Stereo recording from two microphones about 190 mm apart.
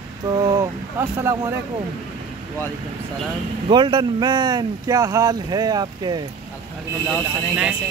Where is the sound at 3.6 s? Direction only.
25° right (ahead or behind).